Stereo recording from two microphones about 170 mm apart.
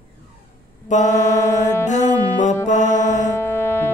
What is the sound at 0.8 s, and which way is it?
Mantra, 45° left (ahead or behind).